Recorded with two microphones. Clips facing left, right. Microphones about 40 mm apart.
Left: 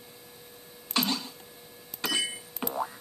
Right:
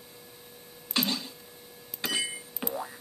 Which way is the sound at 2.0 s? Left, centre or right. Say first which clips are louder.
Left 1 dB; centre.